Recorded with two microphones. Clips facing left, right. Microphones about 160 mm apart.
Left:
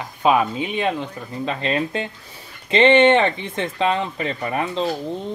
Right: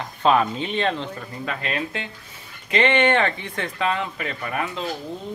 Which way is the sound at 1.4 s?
25° left (ahead or behind).